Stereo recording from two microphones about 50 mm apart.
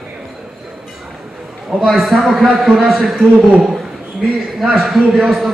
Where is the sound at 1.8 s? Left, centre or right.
Centre.